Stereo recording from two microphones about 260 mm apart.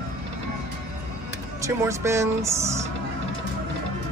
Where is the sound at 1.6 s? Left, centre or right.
Centre.